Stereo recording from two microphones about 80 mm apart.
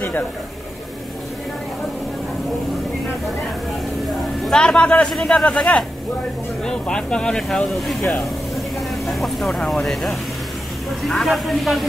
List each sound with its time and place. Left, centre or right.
4.5 s speech: centre
11.1 s speech: centre